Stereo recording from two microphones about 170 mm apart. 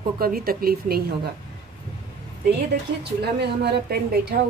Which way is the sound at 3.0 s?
75° right (ahead or behind).